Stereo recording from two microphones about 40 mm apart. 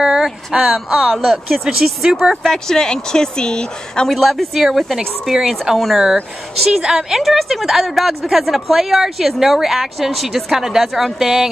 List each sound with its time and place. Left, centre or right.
0.0 s a woman's voice: centre
2.4 s speech: centre
4.1 s speech: centre
5.3 s a woman's voice: centre
6.8 s a woman's voice: centre
7.2 s a woman's voice: centre